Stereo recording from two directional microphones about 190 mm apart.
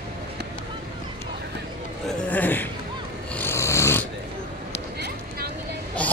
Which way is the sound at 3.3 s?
10° left (ahead or behind).